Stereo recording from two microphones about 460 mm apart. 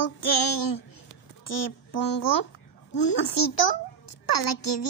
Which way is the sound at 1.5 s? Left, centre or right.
Left.